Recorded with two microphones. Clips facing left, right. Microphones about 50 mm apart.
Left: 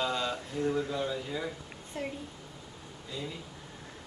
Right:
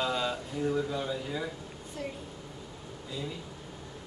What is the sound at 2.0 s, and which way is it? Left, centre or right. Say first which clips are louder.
Speech: left 1 dB; left.